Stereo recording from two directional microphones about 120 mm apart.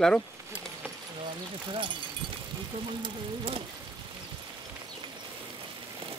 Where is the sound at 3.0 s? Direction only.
50° right (ahead or behind).